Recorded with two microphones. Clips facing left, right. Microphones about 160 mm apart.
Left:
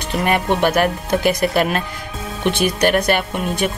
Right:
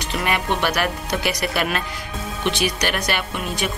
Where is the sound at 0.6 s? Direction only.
50° left (ahead or behind).